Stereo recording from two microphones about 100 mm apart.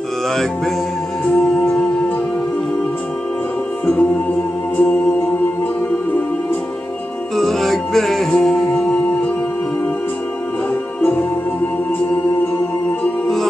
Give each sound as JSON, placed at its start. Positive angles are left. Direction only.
{"t": 1.3, "sound": "music", "side_deg": 10}
{"t": 3.8, "sound": "music", "side_deg": 15}
{"t": 7.3, "sound": "music", "side_deg": 5}
{"t": 11.0, "sound": "music", "side_deg": 20}
{"t": 13.0, "sound": "music", "side_deg": 5}